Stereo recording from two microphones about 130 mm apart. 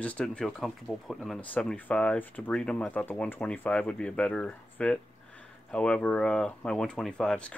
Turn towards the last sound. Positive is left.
turn(degrees=5)  # may be behind; listen again after turning